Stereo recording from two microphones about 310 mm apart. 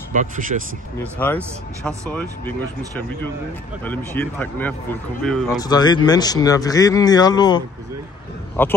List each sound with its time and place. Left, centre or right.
0.1 s speech: right
1.1 s speech: centre
3.8 s speech: centre